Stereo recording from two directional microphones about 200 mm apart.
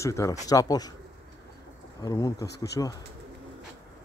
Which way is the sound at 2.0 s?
15° left (ahead or behind).